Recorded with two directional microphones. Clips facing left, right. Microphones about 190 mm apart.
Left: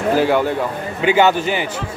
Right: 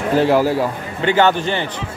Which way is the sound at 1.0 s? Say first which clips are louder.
Left 1 dB; 10° left (ahead or behind).